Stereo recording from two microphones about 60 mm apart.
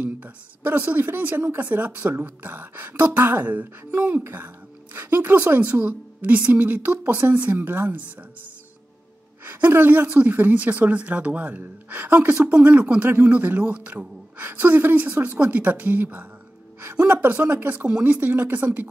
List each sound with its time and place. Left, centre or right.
0.0 s speech: right
9.4 s a woman's voice: right